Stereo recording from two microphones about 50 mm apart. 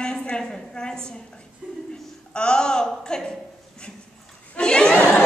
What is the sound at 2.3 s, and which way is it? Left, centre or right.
Speech, centre.